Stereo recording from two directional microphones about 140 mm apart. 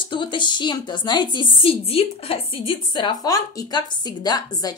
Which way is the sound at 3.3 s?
25° left (ahead or behind).